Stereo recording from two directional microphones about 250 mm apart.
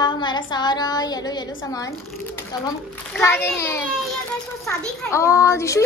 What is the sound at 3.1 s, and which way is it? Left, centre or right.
Child singing, centre.